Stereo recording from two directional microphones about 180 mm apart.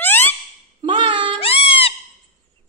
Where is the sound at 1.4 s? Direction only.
30° left (ahead or behind).